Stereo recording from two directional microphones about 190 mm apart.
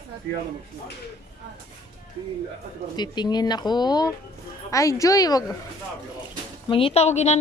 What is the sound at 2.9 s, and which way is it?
Speech, 20° left (ahead or behind).